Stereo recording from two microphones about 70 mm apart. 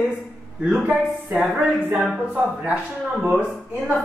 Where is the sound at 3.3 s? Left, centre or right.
Right.